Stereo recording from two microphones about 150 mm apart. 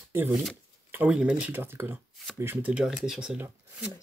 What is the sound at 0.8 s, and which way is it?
Speech, 10° right (ahead or behind).